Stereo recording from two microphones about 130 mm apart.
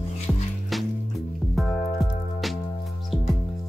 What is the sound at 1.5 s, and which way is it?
Music, centre (ahead or behind).